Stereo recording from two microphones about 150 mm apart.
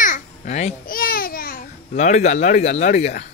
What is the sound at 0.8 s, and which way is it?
Babbling, 75° left (ahead or behind).